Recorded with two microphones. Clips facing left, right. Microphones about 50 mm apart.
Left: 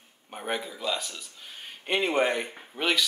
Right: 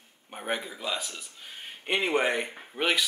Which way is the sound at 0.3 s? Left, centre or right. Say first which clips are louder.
Even; centre.